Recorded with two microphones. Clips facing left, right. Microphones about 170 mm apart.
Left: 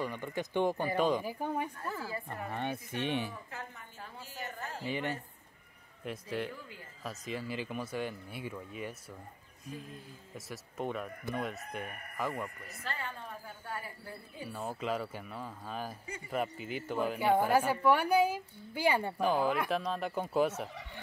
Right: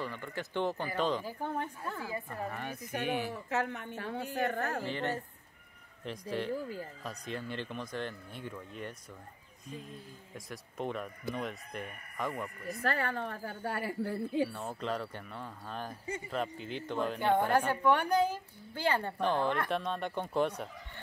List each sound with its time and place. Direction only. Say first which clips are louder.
0.0 s a woman's voice: left 3 dB; 15° left (ahead or behind)
2.2 s a woman's voice: left 2 dB; 25° left (ahead or behind)
3.4 s a woman's voice: right 12 dB; 75° right (ahead or behind); by 4.8 s 60° right (ahead or behind)
4.8 s a woman's voice: right 1 dB; 15° left (ahead or behind)
6.5 s speech: right 11 dB; 40° right (ahead or behind)
7.0 s a woman's voice: even; centre (ahead or behind)
10.3 s speech: left 1 dB; centre (ahead or behind)
12.6 s a woman's voice: right 8 dB; 65° right (ahead or behind)
14.5 s a woman's voice: left 1 dB; 5° left (ahead or behind)